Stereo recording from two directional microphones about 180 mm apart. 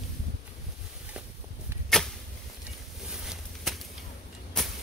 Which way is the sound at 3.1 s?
5° right (ahead or behind).